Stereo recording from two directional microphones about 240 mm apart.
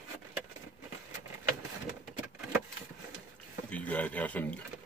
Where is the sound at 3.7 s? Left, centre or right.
Centre.